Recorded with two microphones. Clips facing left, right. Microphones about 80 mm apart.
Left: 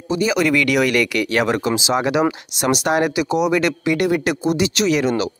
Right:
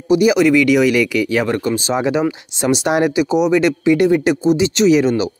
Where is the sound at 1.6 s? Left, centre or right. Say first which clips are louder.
Right 1 dB; left.